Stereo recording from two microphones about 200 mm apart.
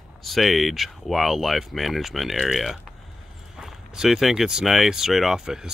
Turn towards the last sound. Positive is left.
turn(degrees=-5)  # may be behind; listen again after turning